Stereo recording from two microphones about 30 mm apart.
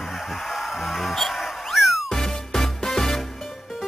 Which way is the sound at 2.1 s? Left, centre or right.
Centre.